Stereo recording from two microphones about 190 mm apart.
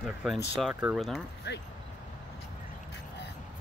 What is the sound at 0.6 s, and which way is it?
Speech, centre (ahead or behind).